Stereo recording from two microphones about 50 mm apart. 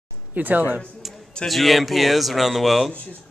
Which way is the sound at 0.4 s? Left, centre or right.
Right.